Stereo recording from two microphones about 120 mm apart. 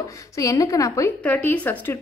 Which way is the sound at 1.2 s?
15° left (ahead or behind).